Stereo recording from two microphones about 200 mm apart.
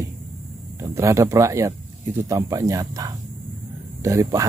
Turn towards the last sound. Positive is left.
turn(degrees=-15)  # may be behind; listen again after turning